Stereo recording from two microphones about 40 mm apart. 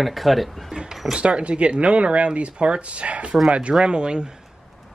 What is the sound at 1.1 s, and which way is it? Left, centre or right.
Speech, right.